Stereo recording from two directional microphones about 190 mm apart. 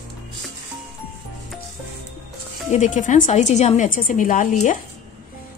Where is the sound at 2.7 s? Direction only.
40° left (ahead or behind).